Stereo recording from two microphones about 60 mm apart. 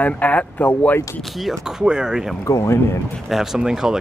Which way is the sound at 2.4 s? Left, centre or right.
Left.